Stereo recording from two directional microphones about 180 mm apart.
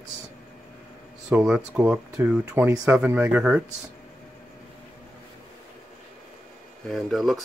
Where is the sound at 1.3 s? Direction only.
5° right (ahead or behind).